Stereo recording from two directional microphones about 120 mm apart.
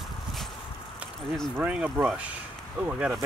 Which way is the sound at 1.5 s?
10° right (ahead or behind).